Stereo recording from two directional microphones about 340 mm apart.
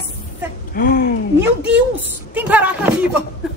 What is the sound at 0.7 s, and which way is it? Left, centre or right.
Speech, left.